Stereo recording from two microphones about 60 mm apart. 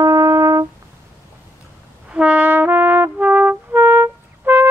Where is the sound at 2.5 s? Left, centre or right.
Right.